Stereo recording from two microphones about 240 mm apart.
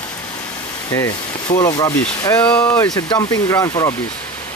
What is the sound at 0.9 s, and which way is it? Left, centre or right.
Speech, centre.